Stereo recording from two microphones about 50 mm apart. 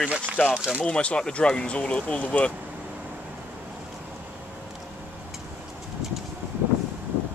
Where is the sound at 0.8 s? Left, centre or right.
Left.